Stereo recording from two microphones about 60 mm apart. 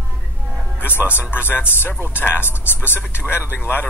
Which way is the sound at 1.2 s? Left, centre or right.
Left.